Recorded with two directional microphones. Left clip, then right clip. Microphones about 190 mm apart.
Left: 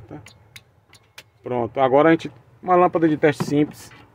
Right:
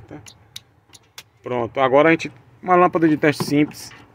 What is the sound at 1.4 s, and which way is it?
Speech, 15° left (ahead or behind).